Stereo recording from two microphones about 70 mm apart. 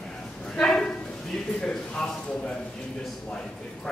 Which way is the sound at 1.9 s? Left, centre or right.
Centre.